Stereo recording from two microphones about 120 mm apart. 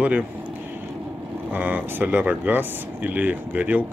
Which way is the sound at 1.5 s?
15° right (ahead or behind).